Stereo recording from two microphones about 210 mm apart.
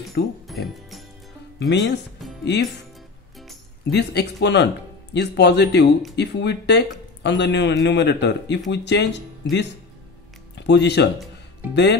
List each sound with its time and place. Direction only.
0.2 s speech: 55° left (ahead or behind)
1.7 s speech: 55° left (ahead or behind)
3.9 s speech: 50° left (ahead or behind)